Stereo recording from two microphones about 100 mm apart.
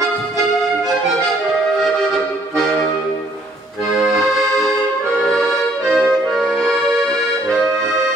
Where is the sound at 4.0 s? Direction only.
Centre (ahead or behind).